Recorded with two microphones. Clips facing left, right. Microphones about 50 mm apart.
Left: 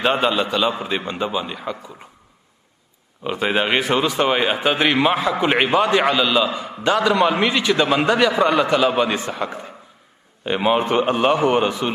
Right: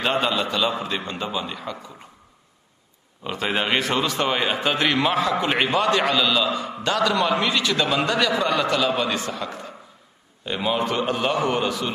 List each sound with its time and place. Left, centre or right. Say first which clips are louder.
0.0 s a man's voice: left 4 dB; centre
3.3 s a man's voice: left 4 dB; centre; by 11.9 s left